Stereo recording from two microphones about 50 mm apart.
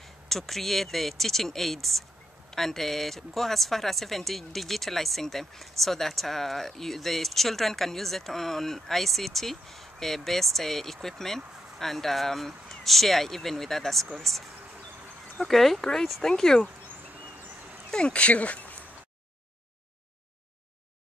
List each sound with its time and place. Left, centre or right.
0.3 s speech: centre
17.9 s speech: centre